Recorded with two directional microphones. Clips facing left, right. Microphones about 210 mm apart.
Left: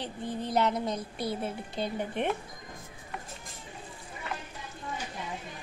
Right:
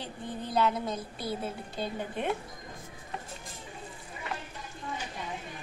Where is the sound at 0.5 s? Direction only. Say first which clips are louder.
Even; 20° left (ahead or behind).